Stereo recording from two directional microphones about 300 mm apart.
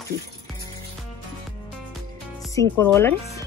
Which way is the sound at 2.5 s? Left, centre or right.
Centre.